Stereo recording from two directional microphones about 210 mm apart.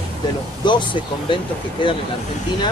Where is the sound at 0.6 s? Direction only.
20° left (ahead or behind).